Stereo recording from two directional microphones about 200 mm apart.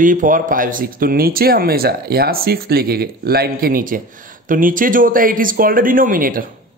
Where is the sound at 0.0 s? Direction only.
40° right (ahead or behind).